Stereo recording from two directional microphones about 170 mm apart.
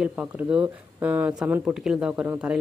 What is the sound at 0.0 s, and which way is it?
Speech, 10° right (ahead or behind).